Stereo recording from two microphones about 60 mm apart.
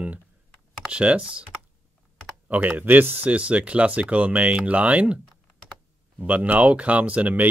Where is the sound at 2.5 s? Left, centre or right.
Right.